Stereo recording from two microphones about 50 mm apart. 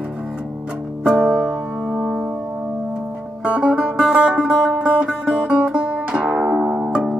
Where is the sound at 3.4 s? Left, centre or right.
Right.